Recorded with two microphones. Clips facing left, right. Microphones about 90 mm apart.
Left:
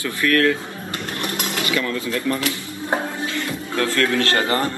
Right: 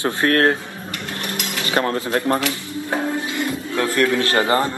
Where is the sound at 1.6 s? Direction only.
40° right (ahead or behind).